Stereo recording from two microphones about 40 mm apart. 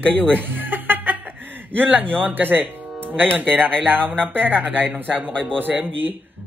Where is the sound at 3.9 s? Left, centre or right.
Right.